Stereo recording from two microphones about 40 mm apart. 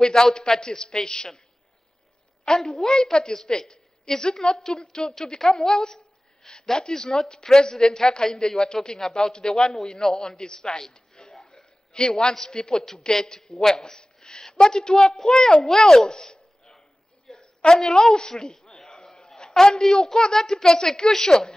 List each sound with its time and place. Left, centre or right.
0.1 s a woman's voice: centre
2.4 s a woman's voice: centre
17.3 s a sound: centre
19.5 s a woman's voice: centre